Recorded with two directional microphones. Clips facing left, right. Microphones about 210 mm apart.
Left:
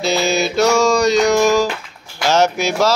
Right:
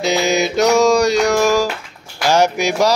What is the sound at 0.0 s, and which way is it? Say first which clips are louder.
Mantra: right 1 dB; 15° right (ahead or behind).